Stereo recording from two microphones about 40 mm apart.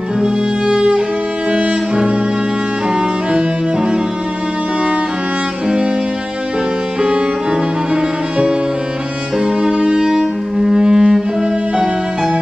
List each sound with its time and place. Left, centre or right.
0.2 s music: right
7.0 s music: right